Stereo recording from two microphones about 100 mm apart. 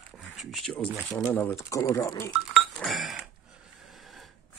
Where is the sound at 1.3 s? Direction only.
20° left (ahead or behind).